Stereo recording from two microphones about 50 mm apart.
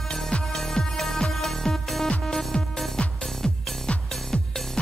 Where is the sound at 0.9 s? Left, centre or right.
Centre.